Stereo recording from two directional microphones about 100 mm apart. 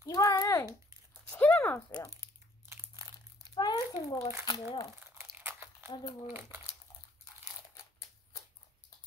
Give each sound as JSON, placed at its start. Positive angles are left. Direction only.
{"t": 0.0, "sound": "a sound", "side_deg": 35}
{"t": 1.3, "sound": "a sound", "side_deg": 15}
{"t": 3.5, "sound": "crumpling", "side_deg": 45}
{"t": 4.5, "sound": "speech", "side_deg": 45}
{"t": 5.0, "sound": "crumpling", "side_deg": -25}
{"t": 5.9, "sound": "speech", "side_deg": 40}
{"t": 6.2, "sound": "speech", "side_deg": -25}